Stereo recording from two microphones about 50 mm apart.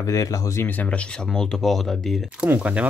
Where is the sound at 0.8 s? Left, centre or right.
Left; by 2.2 s centre.